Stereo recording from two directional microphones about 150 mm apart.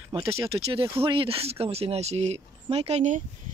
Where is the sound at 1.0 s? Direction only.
35° right (ahead or behind).